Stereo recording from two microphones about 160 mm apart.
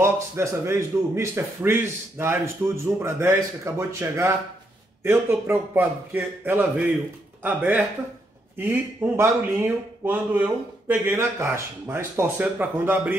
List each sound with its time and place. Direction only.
0.0 s speech: 15° right (ahead or behind)